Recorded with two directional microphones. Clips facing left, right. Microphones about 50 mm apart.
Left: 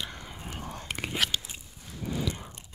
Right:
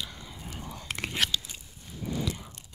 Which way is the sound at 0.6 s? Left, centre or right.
Left.